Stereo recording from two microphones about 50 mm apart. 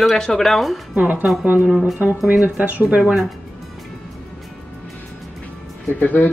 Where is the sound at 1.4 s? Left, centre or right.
Right.